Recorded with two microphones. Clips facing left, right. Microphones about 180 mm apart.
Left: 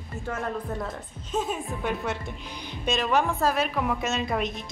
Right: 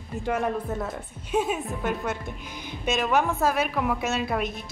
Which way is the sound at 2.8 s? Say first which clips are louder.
Right 1 dB; 5° right (ahead or behind).